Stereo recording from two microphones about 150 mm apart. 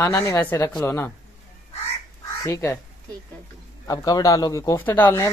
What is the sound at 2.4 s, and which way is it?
Speech, 20° left (ahead or behind).